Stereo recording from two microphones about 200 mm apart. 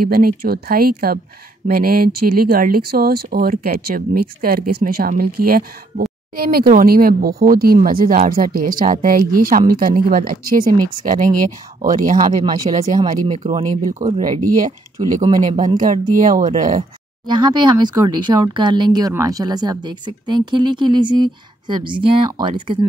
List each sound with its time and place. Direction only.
0.0 s speech: 45° right (ahead or behind)
12.7 s speech: 30° right (ahead or behind)
15.8 s speech: 40° right (ahead or behind)
17.3 s speech: 25° right (ahead or behind)